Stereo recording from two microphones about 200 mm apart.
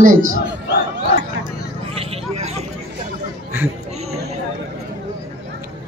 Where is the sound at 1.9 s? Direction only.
30° right (ahead or behind).